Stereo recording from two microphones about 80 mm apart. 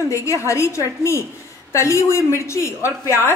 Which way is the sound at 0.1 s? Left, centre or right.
Left.